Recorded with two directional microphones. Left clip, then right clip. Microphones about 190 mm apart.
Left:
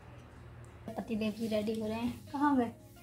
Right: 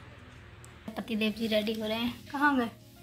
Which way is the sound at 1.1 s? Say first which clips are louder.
Right 6 dB; centre (ahead or behind).